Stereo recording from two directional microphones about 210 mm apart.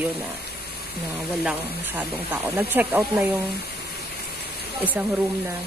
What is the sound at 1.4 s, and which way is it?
Speech, 5° right (ahead or behind).